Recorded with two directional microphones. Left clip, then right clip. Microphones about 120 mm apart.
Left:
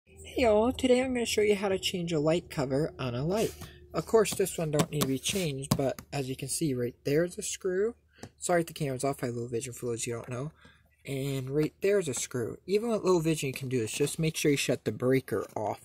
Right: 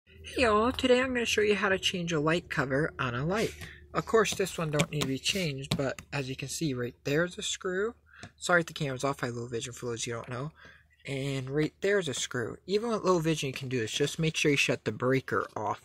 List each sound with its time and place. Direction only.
0.3 s speech: 10° left (ahead or behind)
5.1 s speech: 40° right (ahead or behind)
6.1 s speech: 15° left (ahead or behind)